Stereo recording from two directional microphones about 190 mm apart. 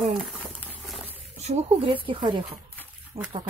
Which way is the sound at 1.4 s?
35° right (ahead or behind).